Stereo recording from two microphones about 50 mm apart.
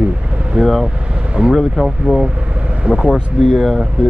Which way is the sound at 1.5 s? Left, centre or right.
Centre.